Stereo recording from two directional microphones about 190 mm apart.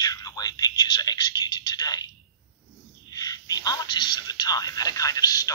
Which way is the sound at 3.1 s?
20° left (ahead or behind).